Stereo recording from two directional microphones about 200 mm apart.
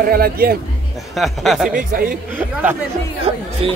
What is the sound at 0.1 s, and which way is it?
Speech, 50° right (ahead or behind).